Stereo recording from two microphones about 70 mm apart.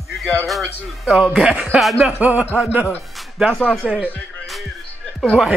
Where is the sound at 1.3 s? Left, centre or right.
Centre.